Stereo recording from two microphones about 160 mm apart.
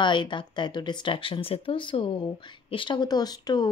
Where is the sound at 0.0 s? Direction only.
30° left (ahead or behind).